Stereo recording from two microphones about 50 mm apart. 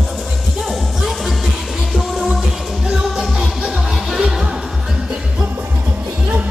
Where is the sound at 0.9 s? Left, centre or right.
Centre.